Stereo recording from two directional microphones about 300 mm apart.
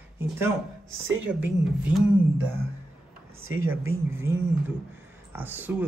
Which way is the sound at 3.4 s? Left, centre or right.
Right.